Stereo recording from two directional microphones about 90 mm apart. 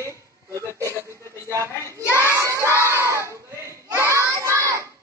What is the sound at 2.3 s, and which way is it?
Children shouting, 35° right (ahead or behind).